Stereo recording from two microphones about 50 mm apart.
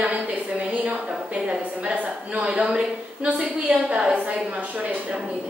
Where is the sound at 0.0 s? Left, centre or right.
Right.